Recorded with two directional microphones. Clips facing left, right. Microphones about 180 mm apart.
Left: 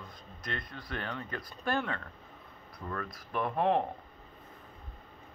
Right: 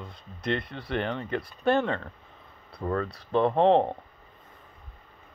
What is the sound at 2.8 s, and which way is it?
Speech, 40° right (ahead or behind).